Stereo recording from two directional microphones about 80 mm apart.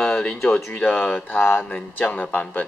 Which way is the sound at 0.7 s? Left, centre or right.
Centre.